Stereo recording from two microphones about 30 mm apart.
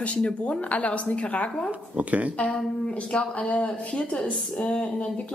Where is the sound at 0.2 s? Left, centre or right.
Left.